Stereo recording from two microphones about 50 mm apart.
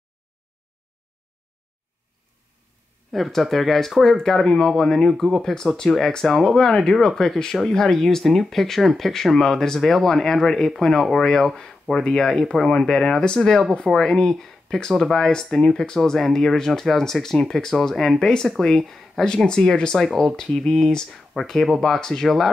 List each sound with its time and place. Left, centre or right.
3.1 s speech: centre
19.2 s speech: centre